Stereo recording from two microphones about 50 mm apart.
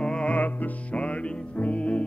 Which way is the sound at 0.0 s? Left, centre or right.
Centre.